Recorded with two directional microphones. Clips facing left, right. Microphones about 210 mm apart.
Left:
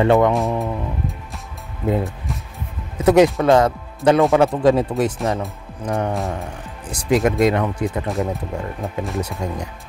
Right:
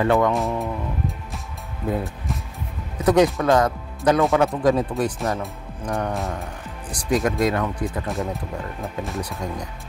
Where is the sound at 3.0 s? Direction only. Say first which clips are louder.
Left 4 dB; 20° left (ahead or behind).